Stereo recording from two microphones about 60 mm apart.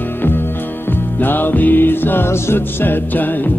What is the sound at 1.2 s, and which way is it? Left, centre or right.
Music, left.